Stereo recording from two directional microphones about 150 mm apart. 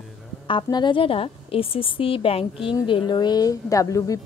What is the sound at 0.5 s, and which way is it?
A woman's voice, 30° left (ahead or behind).